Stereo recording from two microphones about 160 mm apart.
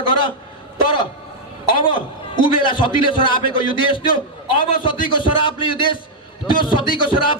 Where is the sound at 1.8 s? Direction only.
30° left (ahead or behind).